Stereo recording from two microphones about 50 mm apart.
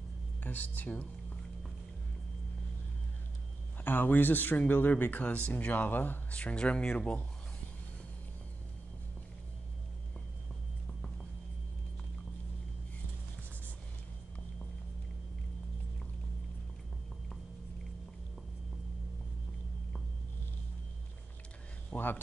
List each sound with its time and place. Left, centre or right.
0.4 s speech: left
3.8 s speech: left
21.9 s a sound: left